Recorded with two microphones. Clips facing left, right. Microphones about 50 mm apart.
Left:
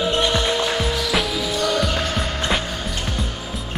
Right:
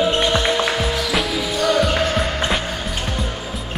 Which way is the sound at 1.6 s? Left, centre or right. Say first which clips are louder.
Right 5 dB; centre.